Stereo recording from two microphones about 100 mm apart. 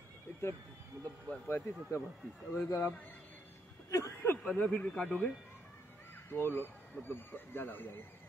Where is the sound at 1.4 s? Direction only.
25° left (ahead or behind).